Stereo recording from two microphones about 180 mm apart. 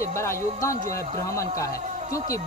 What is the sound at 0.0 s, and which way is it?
Speech, 15° left (ahead or behind).